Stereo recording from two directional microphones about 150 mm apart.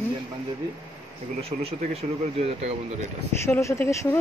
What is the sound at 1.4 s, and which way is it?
Speech, 40° right (ahead or behind).